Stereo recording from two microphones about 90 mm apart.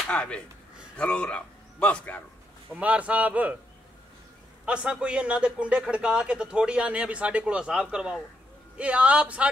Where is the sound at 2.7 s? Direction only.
15° right (ahead or behind).